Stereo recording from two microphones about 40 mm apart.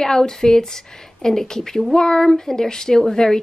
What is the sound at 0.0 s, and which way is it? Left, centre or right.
Speech, centre.